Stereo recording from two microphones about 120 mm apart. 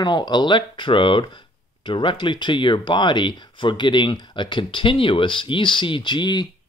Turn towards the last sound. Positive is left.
turn(degrees=40)  # may be behind; listen again after turning